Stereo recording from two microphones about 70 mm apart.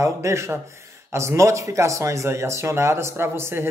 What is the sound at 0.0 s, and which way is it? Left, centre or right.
A man's voice, right.